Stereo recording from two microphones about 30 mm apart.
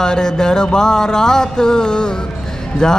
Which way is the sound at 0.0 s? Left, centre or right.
Left.